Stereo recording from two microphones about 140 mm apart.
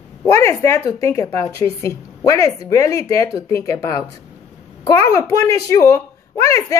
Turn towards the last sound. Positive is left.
turn(degrees=25)  # may be behind; listen again after turning